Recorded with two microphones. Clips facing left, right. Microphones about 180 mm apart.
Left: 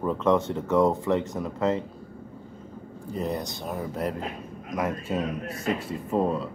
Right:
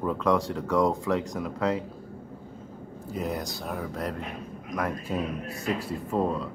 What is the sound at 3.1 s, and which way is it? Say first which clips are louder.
Speech: left 1 dB; centre (ahead or behind).